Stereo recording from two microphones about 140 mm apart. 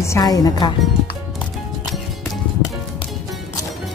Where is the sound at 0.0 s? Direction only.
25° left (ahead or behind).